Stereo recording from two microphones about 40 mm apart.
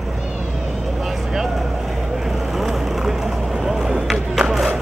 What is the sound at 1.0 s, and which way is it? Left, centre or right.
Vehicle, centre.